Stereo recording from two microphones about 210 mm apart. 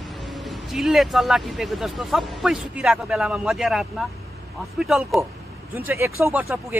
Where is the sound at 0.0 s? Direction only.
Centre (ahead or behind).